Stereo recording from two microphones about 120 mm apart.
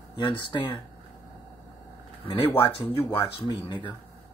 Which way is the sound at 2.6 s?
50° left (ahead or behind).